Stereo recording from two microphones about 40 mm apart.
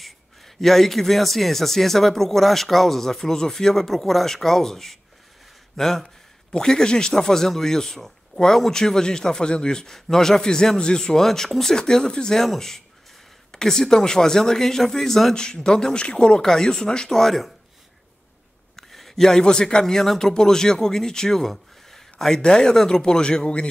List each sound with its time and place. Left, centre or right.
0.6 s speech: centre
6.5 s speech: centre
11.8 s speech: left
12.4 s speech: centre
15.3 s speech: centre
17.1 s speech: centre
18.8 s a man's voice: centre
22.4 s speech: centre